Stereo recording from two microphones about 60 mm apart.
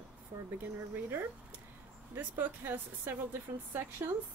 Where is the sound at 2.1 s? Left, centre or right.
Right.